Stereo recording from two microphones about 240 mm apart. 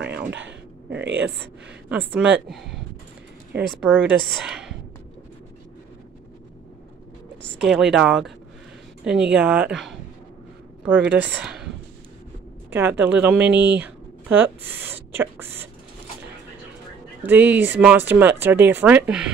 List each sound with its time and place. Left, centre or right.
0.3 s speech: right
1.9 s a woman's voice: centre
7.6 s a woman's voice: centre
11.3 s speech: centre
13.7 s a sound: centre
17.2 s speech: centre